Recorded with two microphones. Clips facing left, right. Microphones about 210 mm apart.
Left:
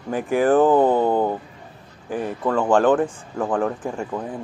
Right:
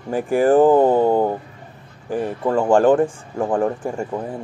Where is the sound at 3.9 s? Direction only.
10° right (ahead or behind).